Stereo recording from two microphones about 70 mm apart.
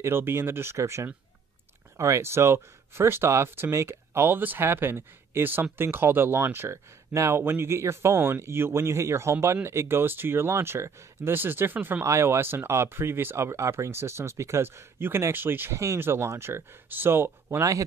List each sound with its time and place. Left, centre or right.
0.0 s speech: right
12.0 s speech: right
15.7 s speech: right